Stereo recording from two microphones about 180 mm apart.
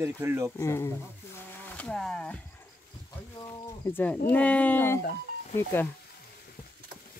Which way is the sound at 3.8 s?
10° left (ahead or behind).